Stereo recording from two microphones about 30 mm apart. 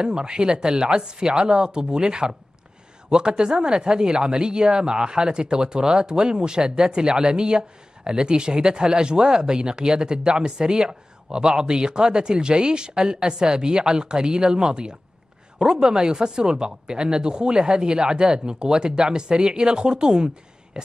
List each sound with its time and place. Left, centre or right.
0.0 s speech: right